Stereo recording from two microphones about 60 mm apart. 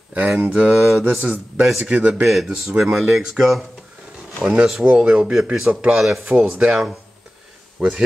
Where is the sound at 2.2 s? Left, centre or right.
Centre.